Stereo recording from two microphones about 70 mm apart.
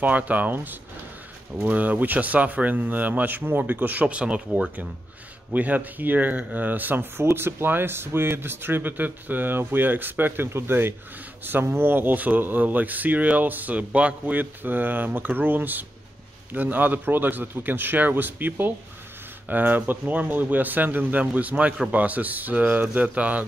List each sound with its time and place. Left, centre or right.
0.0 s speech: right